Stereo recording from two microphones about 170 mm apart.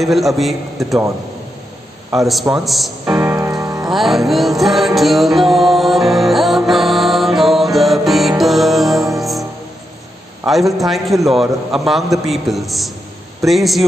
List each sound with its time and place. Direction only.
0.0 s a man's voice: centre (ahead or behind)
2.1 s a man's voice: centre (ahead or behind)
3.2 s music: 15° right (ahead or behind)
3.9 s music: centre (ahead or behind)
10.4 s a man's voice: centre (ahead or behind)